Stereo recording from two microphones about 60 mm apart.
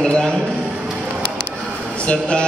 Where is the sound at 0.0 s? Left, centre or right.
Centre.